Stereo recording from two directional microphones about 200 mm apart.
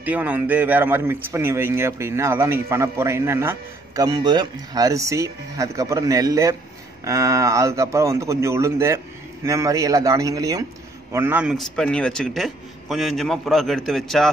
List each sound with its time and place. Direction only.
0.0 s a man's voice: 10° right (ahead or behind)